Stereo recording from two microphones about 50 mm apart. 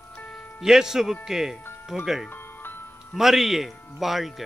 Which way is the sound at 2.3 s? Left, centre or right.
Left.